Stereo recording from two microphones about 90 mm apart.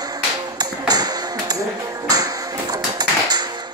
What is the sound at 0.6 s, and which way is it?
Music, 50° right (ahead or behind).